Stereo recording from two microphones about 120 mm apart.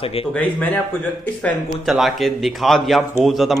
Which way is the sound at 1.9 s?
Centre (ahead or behind).